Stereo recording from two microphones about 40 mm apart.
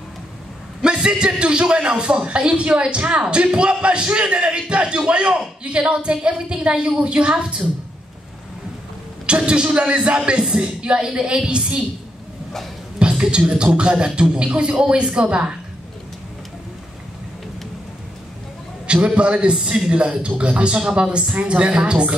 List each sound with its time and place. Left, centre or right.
0.8 s speech: right
9.5 s speech: right
13.0 s a sound: right
13.5 s speech: right
19.0 s speech: right